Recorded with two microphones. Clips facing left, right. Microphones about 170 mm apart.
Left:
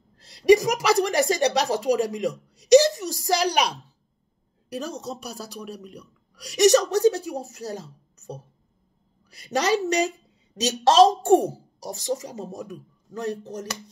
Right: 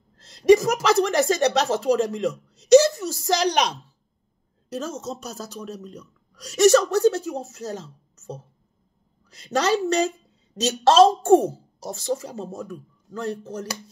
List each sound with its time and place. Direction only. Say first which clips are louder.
0.2 s a woman's voice: right 1 dB; 15° left (ahead or behind)